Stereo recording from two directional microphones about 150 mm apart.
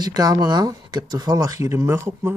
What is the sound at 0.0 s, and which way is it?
Speech, 25° right (ahead or behind).